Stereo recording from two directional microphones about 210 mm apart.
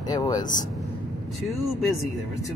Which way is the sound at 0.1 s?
20° left (ahead or behind).